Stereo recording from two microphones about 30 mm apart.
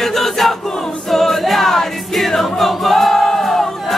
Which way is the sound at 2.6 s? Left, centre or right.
Centre.